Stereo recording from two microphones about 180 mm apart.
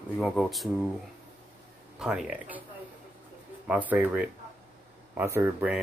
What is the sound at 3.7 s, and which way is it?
Speech, 5° right (ahead or behind).